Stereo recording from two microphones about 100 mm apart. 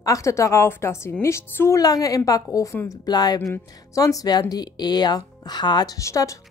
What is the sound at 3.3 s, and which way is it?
Speech, 30° left (ahead or behind).